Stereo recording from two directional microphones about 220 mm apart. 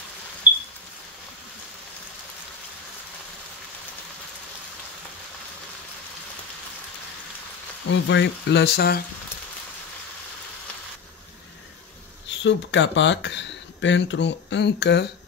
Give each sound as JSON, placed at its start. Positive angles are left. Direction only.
{"t": 0.5, "sound": "a sound", "side_deg": -10}
{"t": 7.9, "sound": "speech", "side_deg": 55}
{"t": 12.4, "sound": "speech", "side_deg": 55}